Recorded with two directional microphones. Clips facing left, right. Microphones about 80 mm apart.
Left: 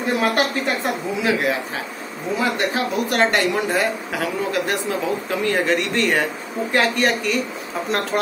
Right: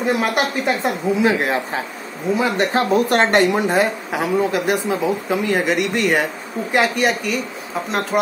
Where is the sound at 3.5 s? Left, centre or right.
Right.